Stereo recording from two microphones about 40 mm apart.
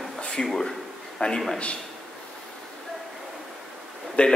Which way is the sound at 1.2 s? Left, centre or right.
Left.